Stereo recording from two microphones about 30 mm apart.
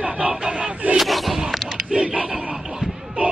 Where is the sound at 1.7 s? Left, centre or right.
Right.